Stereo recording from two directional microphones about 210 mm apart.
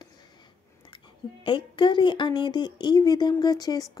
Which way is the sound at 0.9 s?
20° left (ahead or behind).